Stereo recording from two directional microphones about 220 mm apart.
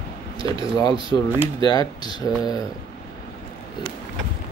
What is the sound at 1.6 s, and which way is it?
Speech, 20° left (ahead or behind).